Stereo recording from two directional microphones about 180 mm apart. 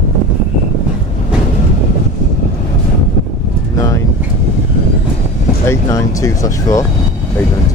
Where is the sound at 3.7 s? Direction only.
15° left (ahead or behind).